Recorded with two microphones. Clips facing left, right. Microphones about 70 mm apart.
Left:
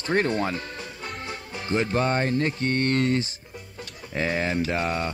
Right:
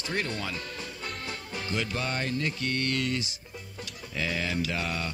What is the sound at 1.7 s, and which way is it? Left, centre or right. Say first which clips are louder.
Speech: left 9 dB; left.